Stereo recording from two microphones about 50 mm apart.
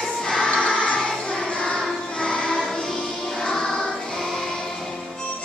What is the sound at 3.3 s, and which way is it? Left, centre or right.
Music, centre.